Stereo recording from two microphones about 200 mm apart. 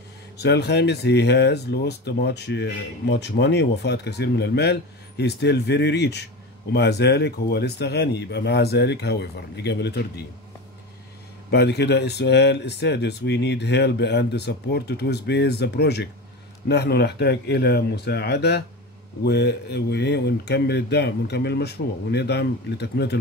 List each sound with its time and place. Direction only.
0.4 s speech: 55° left (ahead or behind)
11.5 s speech: 55° left (ahead or behind)